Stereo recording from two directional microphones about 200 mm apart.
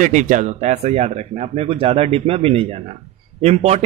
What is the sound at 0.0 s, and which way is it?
Speech, 40° right (ahead or behind).